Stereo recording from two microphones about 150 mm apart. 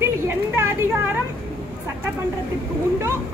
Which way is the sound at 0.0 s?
15° right (ahead or behind).